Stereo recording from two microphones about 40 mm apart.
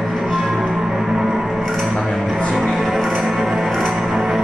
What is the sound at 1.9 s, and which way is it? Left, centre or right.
Music, centre.